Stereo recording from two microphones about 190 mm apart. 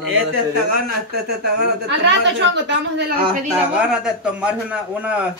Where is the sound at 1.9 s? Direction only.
70° right (ahead or behind).